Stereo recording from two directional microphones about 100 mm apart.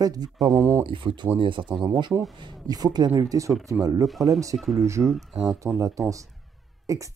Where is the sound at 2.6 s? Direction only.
40° right (ahead or behind).